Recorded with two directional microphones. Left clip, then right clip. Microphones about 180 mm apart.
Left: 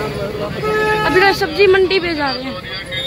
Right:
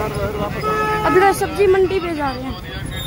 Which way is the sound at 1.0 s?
15° right (ahead or behind).